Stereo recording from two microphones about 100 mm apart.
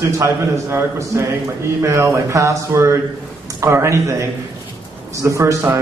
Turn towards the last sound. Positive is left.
turn(degrees=-30)  # may be behind; listen again after turning